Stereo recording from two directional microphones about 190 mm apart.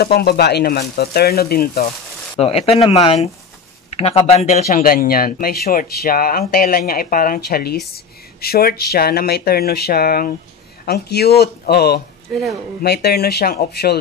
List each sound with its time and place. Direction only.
0.0 s speech: 55° left (ahead or behind)
2.3 s speech: 30° left (ahead or behind)
4.8 s speech: 50° left (ahead or behind)